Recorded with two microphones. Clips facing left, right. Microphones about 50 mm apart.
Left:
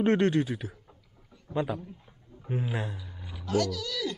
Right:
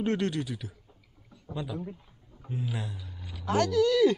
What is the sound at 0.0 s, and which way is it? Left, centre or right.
Speech, left.